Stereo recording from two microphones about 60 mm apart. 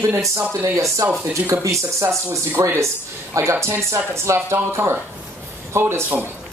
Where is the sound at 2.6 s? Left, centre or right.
Right.